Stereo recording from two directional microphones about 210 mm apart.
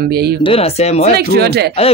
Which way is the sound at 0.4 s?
25° left (ahead or behind).